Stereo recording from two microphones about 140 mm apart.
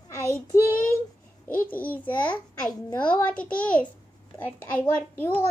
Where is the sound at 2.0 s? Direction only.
10° left (ahead or behind).